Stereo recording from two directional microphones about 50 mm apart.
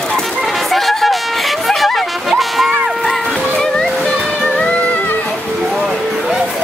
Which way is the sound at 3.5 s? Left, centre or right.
Centre.